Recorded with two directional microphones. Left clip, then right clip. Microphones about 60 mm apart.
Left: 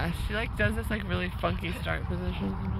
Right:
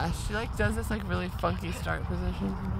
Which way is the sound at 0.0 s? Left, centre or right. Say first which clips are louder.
Even; right.